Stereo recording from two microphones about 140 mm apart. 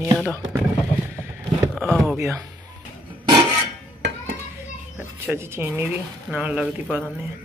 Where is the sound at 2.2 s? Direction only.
20° right (ahead or behind).